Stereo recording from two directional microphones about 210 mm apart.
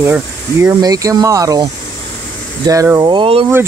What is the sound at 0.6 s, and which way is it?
Speech, 15° right (ahead or behind).